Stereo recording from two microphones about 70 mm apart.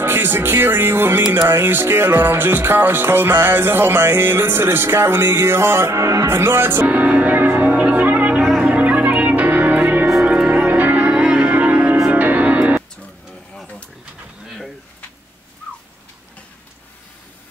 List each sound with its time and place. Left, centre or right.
0.0 s music: right